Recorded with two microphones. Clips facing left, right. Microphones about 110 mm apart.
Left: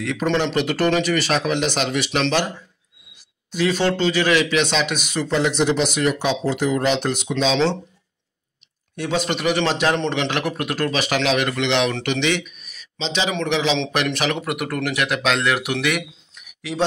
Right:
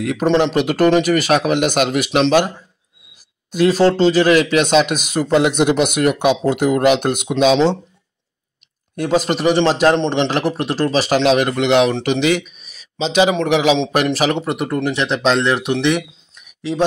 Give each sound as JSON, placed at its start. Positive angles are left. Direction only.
{"t": 0.0, "sound": "speech", "side_deg": -40}
{"t": 3.5, "sound": "speech", "side_deg": -40}
{"t": 8.9, "sound": "speech", "side_deg": -45}
{"t": 16.4, "sound": "a sound", "side_deg": -25}